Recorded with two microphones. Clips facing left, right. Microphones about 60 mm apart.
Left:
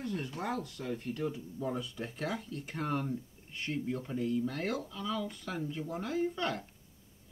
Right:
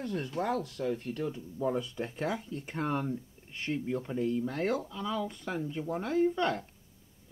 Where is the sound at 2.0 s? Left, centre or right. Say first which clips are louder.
Right 3 dB; centre.